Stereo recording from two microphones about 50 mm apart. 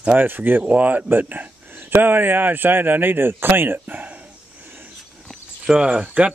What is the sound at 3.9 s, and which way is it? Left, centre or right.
Speech, right.